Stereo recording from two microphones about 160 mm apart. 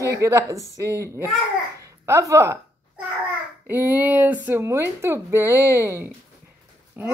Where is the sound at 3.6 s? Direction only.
15° right (ahead or behind).